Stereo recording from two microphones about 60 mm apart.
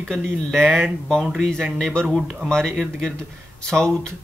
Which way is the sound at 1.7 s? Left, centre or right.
Centre.